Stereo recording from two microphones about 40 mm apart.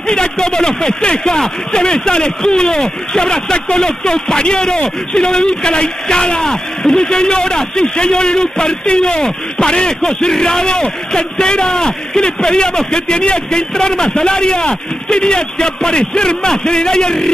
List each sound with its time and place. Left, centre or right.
0.0 s speech: centre